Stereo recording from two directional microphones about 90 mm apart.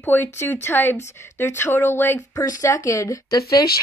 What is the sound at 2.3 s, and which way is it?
Speech, 40° left (ahead or behind).